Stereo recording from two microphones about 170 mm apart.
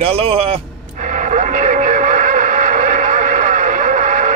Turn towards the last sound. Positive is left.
turn(degrees=-50)  # may be behind; listen again after turning